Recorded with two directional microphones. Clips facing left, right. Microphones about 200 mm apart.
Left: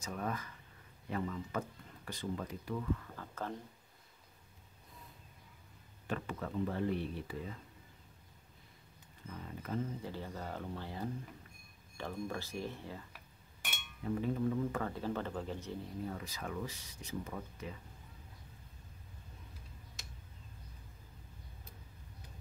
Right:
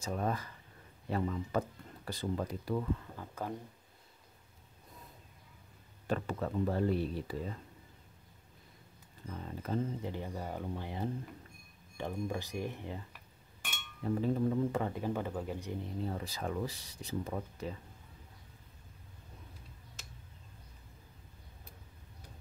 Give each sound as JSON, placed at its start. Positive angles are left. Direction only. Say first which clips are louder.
{"t": 0.0, "sound": "speech", "louder": "right 4 dB", "side_deg": -35}
{"t": 3.2, "sound": "speech", "louder": "right 2 dB", "side_deg": -10}
{"t": 6.0, "sound": "speech", "louder": "right 5 dB", "side_deg": -35}
{"t": 9.3, "sound": "speech", "louder": "right 4 dB", "side_deg": -35}
{"t": 10.0, "sound": "speech", "louder": "right 3 dB", "side_deg": -15}
{"t": 14.0, "sound": "speech", "louder": "right 3 dB", "side_deg": -35}
{"t": 14.8, "sound": "speech", "louder": "right 3 dB", "side_deg": -15}
{"t": 16.0, "sound": "speech", "louder": "right 4 dB", "side_deg": -30}